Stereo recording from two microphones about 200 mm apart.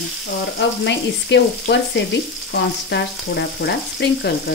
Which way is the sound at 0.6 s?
60° left (ahead or behind).